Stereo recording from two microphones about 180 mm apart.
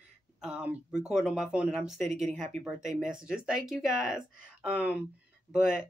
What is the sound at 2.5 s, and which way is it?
Speech, 45° right (ahead or behind).